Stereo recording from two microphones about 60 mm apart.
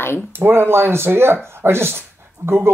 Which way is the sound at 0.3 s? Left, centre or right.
Right.